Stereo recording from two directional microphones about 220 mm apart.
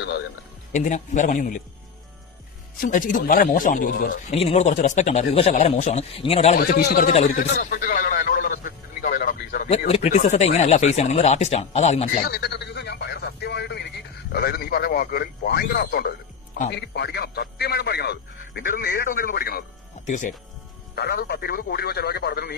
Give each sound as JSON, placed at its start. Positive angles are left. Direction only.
{"t": 0.7, "sound": "speech", "side_deg": 35}
{"t": 2.8, "sound": "speech", "side_deg": 35}
{"t": 6.6, "sound": "speech", "side_deg": 45}
{"t": 7.3, "sound": "a sound", "side_deg": 40}
{"t": 9.7, "sound": "speech", "side_deg": 30}
{"t": 12.3, "sound": "speech", "side_deg": 50}